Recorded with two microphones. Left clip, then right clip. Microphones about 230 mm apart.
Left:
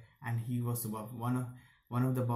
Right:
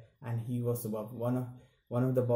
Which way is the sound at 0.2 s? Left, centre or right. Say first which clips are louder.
Right 2 dB; centre.